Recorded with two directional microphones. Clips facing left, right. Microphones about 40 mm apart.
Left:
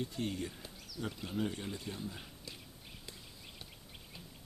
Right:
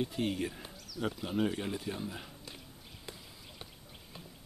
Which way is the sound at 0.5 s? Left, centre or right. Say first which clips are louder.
Right 4 dB; right.